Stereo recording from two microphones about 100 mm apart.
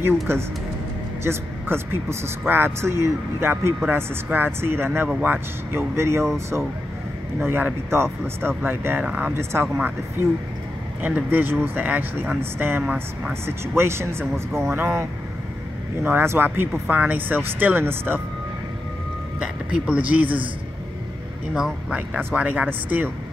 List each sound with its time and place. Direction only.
0.0 s speech: 25° right (ahead or behind)
7.4 s speech: 25° right (ahead or behind)
11.0 s speech: 15° right (ahead or behind)
16.1 s speech: 20° right (ahead or behind)
19.4 s speech: 10° right (ahead or behind)
21.5 s speech: 10° right (ahead or behind)